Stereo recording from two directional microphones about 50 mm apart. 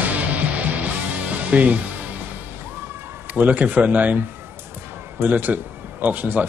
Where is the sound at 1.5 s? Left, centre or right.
Right.